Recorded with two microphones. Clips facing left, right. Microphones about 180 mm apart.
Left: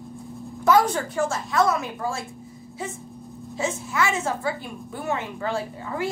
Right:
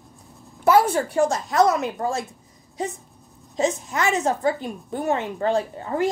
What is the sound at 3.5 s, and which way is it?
A woman's voice, 40° right (ahead or behind).